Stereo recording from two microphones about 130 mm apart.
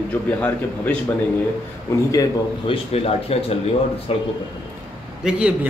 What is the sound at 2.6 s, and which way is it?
Speech, 45° left (ahead or behind).